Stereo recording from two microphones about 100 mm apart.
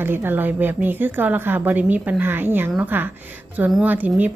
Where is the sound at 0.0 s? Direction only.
20° right (ahead or behind).